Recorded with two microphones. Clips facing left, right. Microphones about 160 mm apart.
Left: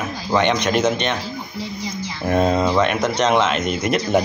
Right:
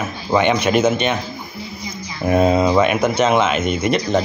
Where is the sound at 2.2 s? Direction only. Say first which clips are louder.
Right 3 dB; 5° right (ahead or behind).